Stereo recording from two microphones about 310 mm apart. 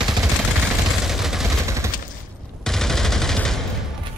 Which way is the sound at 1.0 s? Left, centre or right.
Centre.